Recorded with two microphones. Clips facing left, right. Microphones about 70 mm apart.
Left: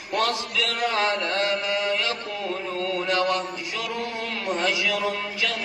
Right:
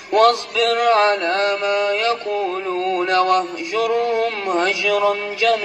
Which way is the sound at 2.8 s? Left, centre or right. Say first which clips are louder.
Right 7 dB; right.